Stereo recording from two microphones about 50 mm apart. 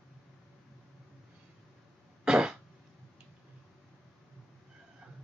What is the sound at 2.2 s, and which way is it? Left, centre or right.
Cough, centre.